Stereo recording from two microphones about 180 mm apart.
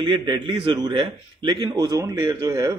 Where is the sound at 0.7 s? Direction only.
25° right (ahead or behind).